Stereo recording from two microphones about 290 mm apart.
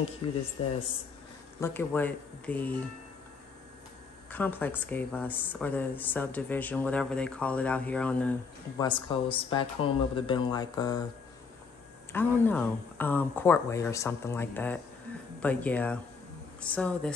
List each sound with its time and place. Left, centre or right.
0.2 s speech: centre
1.6 s speech: centre
4.3 s a woman's voice: centre
8.8 s speech: centre
12.1 s a woman's voice: centre